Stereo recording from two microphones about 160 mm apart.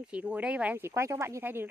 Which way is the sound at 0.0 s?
10° right (ahead or behind).